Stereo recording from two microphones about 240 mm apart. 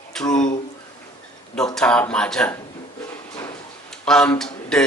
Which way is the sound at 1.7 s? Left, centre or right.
Centre.